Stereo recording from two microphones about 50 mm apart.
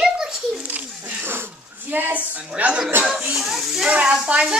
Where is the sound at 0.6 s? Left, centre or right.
Right.